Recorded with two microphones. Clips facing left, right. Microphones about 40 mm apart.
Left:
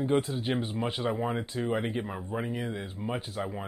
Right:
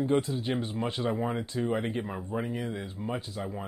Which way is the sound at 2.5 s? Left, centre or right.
Left.